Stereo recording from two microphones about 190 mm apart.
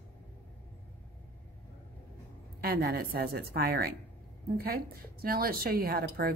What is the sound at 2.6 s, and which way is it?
A woman's voice, 55° right (ahead or behind).